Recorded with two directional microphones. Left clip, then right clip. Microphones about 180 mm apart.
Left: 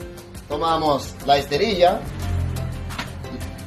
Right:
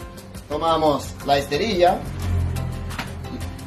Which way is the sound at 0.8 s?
30° left (ahead or behind).